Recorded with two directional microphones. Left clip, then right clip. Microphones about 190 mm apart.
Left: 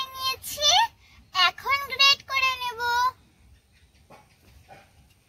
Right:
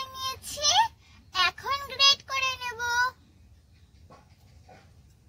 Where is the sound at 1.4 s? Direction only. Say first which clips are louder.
Left 4 dB; 5° right (ahead or behind).